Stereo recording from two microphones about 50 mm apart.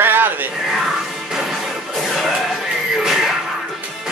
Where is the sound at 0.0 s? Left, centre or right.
Right.